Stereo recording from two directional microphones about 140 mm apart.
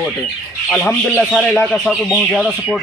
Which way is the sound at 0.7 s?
10° left (ahead or behind).